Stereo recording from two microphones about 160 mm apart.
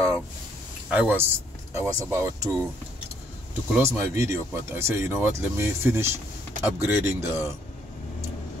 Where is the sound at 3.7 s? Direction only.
15° right (ahead or behind).